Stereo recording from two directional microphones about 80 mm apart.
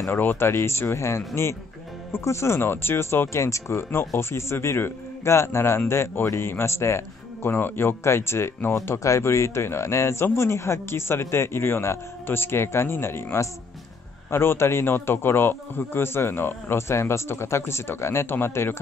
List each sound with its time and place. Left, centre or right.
0.1 s speech: left